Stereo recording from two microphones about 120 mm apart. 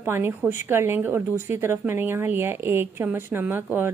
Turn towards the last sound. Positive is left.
turn(degrees=-15)  # may be behind; listen again after turning